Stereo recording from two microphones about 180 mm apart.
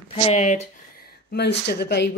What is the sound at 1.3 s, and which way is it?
Speech, 65° left (ahead or behind).